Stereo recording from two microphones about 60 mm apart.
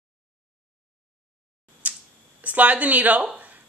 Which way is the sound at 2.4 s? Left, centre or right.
Right.